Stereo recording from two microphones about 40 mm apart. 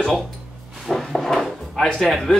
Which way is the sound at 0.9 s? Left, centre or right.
Centre.